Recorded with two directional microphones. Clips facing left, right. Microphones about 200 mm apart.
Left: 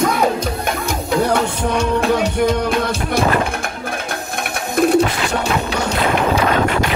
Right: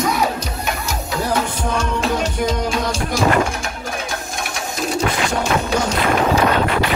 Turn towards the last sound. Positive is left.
turn(degrees=60)  # may be behind; listen again after turning